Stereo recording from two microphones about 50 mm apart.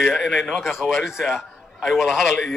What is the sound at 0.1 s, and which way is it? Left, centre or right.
Speech, centre.